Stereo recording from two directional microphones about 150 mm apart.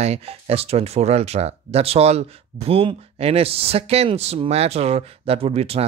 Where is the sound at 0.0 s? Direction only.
45° right (ahead or behind).